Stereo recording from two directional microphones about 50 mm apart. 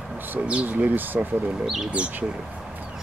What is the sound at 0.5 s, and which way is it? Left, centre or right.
Speech, right.